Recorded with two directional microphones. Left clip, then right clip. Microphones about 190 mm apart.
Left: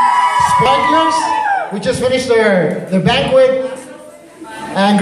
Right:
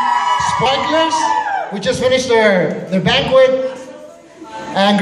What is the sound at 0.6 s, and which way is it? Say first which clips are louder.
A man's voice: left 3 dB; 55° left (ahead or behind).